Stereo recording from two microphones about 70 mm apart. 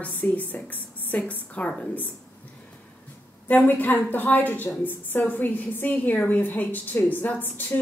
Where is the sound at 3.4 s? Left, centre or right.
Left.